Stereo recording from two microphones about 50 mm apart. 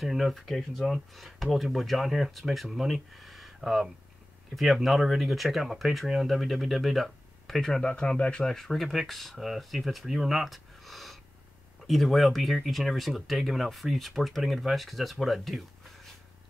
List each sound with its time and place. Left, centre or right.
0.0 s speech: centre
7.8 s speech: centre
8.5 s speech: centre